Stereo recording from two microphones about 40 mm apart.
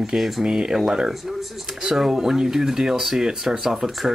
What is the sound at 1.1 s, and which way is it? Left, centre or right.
Speech, centre.